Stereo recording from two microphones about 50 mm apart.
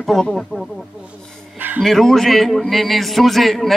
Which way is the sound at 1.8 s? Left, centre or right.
Centre.